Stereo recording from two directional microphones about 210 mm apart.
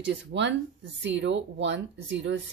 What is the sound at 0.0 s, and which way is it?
Speech, 60° right (ahead or behind).